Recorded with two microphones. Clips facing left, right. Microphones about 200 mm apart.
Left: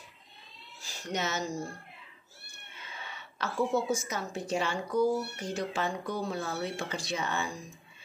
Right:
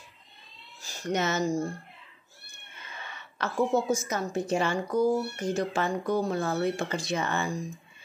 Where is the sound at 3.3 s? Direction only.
50° right (ahead or behind).